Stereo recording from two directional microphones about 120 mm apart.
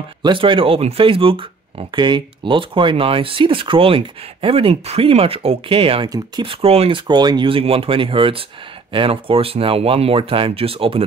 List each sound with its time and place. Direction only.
0.2 s speech: 45° right (ahead or behind)
6.0 s speech: 30° right (ahead or behind)
6.4 s speech: 50° right (ahead or behind)
7.0 s speech: 35° right (ahead or behind)